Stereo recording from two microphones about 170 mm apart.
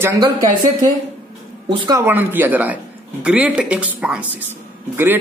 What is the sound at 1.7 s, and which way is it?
Speech, 20° right (ahead or behind).